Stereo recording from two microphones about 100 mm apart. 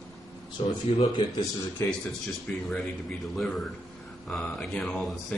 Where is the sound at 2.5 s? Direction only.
15° left (ahead or behind).